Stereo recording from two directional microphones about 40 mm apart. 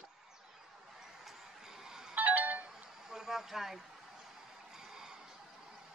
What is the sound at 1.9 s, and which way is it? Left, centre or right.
Music, centre.